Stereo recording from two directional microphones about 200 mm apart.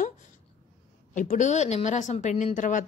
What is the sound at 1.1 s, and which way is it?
A woman's voice, 40° left (ahead or behind).